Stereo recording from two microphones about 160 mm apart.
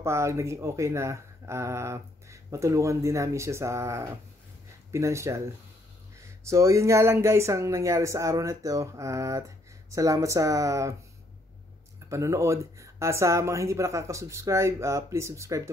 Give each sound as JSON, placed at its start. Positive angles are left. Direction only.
{"t": 0.0, "sound": "speech", "side_deg": -20}
{"t": 12.1, "sound": "speech", "side_deg": -20}